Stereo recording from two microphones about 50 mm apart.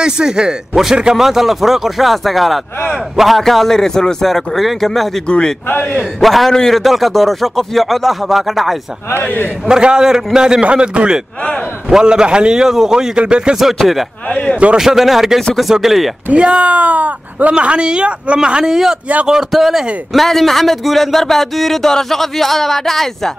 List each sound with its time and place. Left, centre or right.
0.0 s a man's voice: centre
5.7 s a man's voice: left
6.2 s a man's voice: centre
9.1 s a man's voice: left
9.7 s speech: centre
14.3 s speech: left
14.8 s a man's voice: centre
16.3 s a man's voice: right; by 23.3 s centre